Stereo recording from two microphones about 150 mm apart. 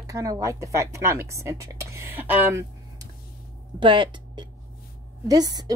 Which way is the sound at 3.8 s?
35° right (ahead or behind).